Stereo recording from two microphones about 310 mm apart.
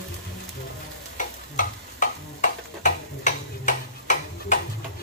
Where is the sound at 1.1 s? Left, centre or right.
Left.